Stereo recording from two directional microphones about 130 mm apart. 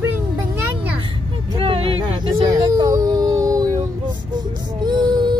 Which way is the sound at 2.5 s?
25° right (ahead or behind).